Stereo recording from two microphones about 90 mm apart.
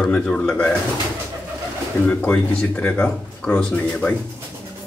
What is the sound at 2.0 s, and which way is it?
Speech, 15° left (ahead or behind).